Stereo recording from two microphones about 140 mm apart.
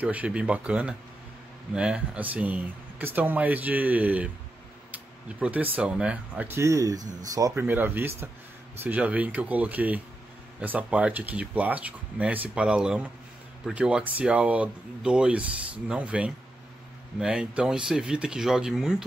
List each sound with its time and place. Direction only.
0.0 s speech: 10° right (ahead or behind)
4.9 s a sound: 10° right (ahead or behind)
5.8 s speech: 5° right (ahead or behind); by 7.6 s 25° right (ahead or behind)
7.6 s speech: 15° right (ahead or behind)